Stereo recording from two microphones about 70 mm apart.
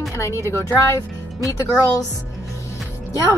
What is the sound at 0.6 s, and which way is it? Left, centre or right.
Speech, left.